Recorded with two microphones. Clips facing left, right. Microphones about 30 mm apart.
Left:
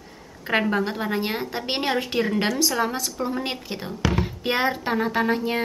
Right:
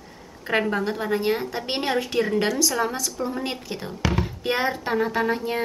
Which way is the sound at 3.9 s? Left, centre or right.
Centre.